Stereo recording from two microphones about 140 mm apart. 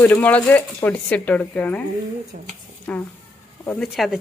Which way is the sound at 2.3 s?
75° right (ahead or behind).